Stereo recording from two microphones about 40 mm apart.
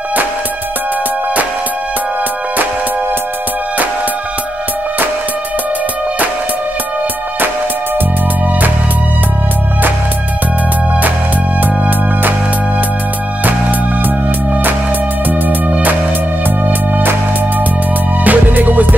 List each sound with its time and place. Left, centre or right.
13.5 s music: right
15.7 s music: right
18.2 s music: right